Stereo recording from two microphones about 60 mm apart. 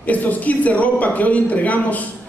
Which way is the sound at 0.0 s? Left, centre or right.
Left.